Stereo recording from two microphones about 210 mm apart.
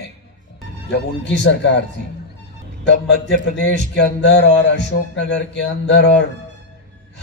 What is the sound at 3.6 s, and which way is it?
A man's voice, 55° left (ahead or behind).